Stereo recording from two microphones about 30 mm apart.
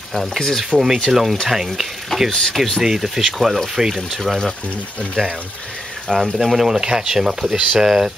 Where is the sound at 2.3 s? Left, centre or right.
Centre.